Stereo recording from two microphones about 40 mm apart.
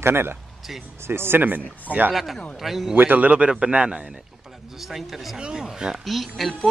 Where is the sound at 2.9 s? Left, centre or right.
Right.